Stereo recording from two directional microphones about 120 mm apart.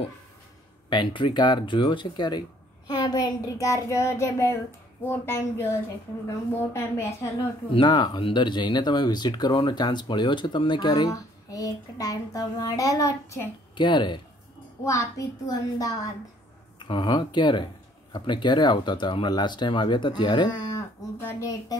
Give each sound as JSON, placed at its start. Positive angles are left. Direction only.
{"t": 0.8, "sound": "speech", "side_deg": 40}
{"t": 2.9, "sound": "child singing", "side_deg": 35}
{"t": 7.7, "sound": "speech", "side_deg": 40}
{"t": 13.7, "sound": "speech", "side_deg": 40}
{"t": 14.9, "sound": "child singing", "side_deg": 25}
{"t": 16.8, "sound": "speech", "side_deg": 40}